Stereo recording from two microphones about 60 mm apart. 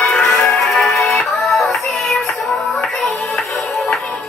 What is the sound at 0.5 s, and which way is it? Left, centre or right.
Music, centre.